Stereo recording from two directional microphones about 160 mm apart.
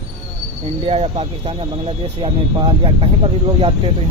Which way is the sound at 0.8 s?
40° right (ahead or behind).